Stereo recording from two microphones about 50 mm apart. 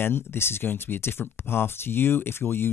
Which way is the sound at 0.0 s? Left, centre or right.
Left.